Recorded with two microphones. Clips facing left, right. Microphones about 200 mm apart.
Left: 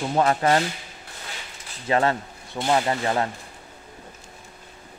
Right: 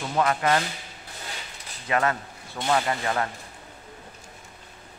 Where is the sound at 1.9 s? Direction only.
30° left (ahead or behind).